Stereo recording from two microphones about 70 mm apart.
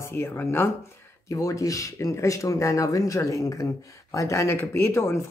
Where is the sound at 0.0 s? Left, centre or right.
Left.